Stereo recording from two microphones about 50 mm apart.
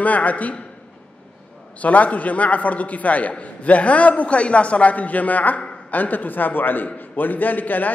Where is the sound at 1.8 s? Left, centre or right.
Left.